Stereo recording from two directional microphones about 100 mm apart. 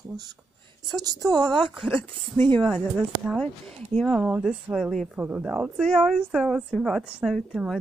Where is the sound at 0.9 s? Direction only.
40° right (ahead or behind).